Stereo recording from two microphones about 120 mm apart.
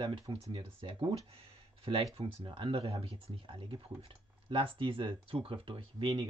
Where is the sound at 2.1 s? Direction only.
45° right (ahead or behind).